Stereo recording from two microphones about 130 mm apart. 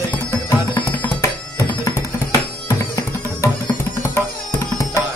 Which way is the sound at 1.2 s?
20° left (ahead or behind).